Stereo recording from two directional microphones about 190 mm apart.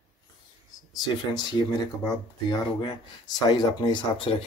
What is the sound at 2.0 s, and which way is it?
Speech, 20° left (ahead or behind).